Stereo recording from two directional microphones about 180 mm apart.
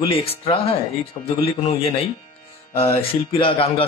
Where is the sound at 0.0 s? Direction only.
30° left (ahead or behind).